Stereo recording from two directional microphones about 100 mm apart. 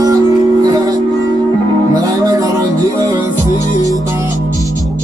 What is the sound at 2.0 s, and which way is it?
Music, 35° right (ahead or behind).